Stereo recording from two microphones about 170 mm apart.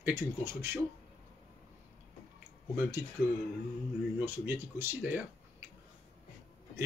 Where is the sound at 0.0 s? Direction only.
15° right (ahead or behind).